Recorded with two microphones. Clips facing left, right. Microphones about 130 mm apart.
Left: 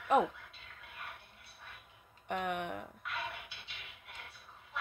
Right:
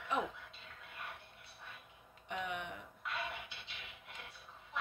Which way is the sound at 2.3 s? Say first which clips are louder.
Left 5 dB; 55° left (ahead or behind).